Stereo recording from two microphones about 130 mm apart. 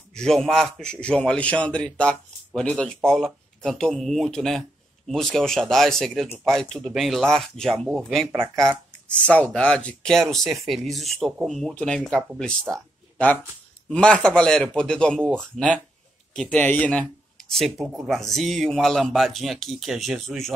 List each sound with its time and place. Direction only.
0.1 s a man's voice: 5° left (ahead or behind)
12.7 s a sound: 10° left (ahead or behind)
13.8 s a man's voice: 5° left (ahead or behind)
17.8 s speech: 10° right (ahead or behind)
18.1 s a man's voice: centre (ahead or behind)